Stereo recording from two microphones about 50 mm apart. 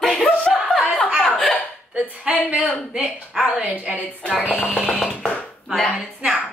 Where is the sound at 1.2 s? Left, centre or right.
Centre.